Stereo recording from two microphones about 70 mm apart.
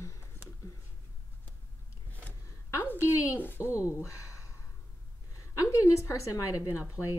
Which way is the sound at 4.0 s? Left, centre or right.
Left.